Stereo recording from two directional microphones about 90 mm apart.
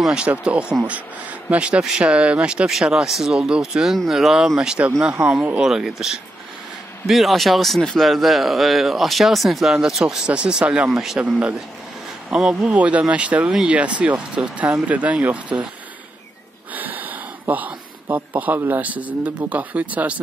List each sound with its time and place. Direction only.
0.0 s speech: 10° right (ahead or behind)
11.2 s speech: 15° right (ahead or behind)
16.7 s a sound: 20° right (ahead or behind)
18.1 s speech: 20° right (ahead or behind)